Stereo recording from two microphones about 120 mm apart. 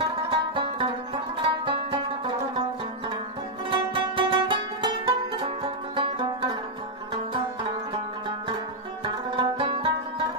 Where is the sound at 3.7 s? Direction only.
45° right (ahead or behind).